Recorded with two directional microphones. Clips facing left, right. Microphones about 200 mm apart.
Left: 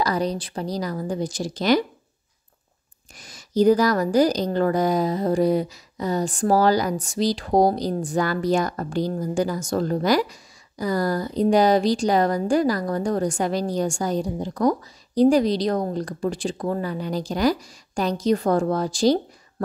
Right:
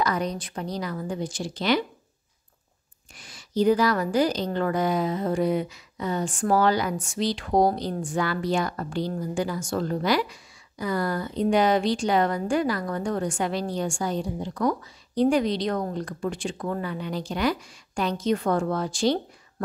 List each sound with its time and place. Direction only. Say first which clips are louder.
0.0 s a woman's voice: left 3 dB; 35° left (ahead or behind)
3.2 s a woman's voice: left 4 dB; 40° left (ahead or behind)